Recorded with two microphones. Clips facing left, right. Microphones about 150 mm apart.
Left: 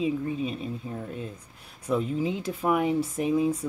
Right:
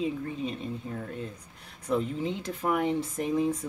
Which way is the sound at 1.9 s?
5° left (ahead or behind).